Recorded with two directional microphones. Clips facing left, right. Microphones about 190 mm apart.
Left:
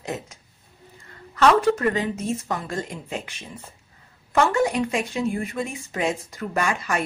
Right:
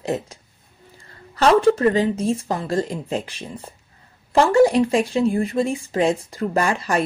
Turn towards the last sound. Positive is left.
turn(degrees=-35)  # may be behind; listen again after turning